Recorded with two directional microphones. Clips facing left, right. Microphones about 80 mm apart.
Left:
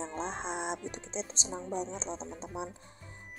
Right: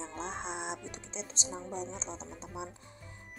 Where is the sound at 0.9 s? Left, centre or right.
Left.